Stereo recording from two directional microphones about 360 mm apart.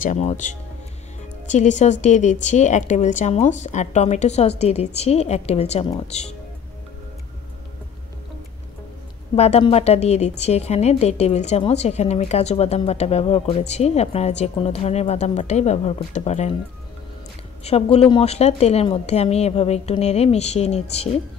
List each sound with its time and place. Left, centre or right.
0.0 s a woman's voice: centre
9.3 s a woman's voice: centre
17.6 s a woman's voice: centre